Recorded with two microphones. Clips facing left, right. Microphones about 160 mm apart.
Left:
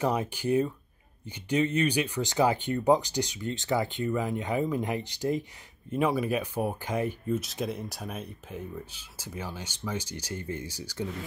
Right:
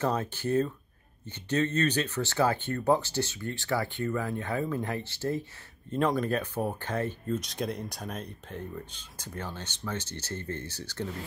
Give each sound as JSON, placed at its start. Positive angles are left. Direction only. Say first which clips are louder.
{"t": 0.0, "sound": "speech", "louder": "left 1 dB", "side_deg": 10}